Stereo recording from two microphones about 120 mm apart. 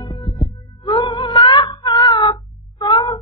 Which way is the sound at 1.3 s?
40° left (ahead or behind).